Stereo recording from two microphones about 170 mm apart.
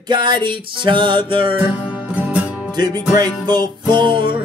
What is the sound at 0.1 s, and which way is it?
Music, 25° right (ahead or behind).